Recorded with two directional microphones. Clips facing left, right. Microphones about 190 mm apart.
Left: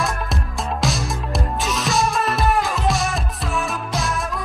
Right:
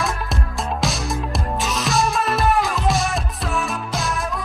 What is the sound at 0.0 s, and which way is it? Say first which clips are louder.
Music: even; centre (ahead or behind).